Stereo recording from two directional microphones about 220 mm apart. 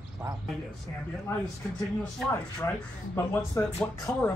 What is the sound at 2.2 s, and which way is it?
Speech, 5° left (ahead or behind).